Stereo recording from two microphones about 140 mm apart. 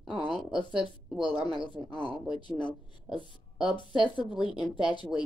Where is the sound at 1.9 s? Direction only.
5° left (ahead or behind).